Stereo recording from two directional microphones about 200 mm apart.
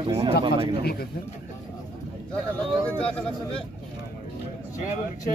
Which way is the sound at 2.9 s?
5° left (ahead or behind).